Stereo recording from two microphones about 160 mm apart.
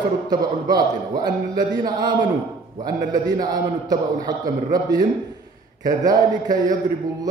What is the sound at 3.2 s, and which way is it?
A man's voice, 25° right (ahead or behind).